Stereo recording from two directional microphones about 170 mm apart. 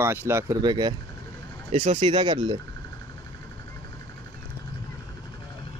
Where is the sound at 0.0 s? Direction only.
15° right (ahead or behind).